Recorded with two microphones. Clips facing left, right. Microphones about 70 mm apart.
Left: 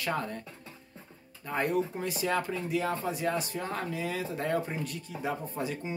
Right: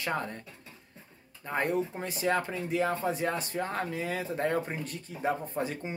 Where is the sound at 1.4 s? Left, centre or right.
Right.